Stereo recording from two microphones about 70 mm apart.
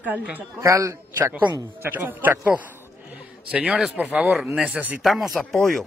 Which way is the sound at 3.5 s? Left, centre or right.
Centre.